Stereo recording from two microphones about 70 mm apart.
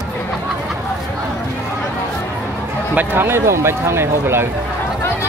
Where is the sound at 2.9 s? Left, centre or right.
Right.